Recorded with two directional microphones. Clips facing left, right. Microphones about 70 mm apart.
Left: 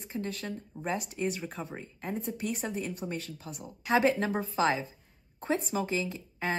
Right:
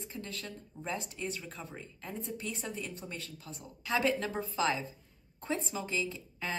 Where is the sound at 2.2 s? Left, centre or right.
Centre.